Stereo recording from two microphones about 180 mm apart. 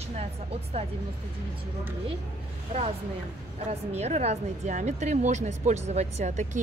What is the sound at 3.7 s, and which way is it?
A woman's voice, 35° right (ahead or behind).